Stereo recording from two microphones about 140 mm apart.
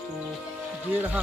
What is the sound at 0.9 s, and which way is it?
Speech, 10° right (ahead or behind).